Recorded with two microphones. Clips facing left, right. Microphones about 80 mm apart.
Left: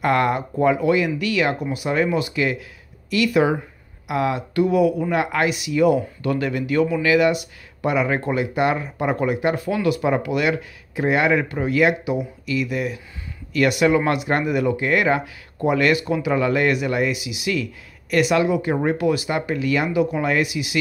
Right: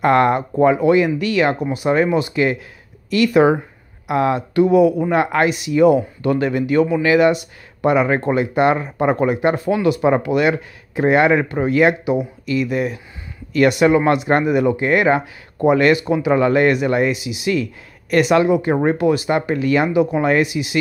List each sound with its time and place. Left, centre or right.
0.0 s speech: right